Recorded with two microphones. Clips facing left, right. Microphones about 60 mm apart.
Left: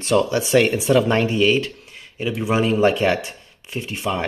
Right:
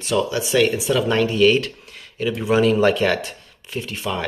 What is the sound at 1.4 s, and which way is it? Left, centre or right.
Speech, centre.